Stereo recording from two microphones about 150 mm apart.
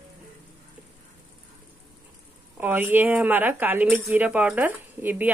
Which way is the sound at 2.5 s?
10° right (ahead or behind).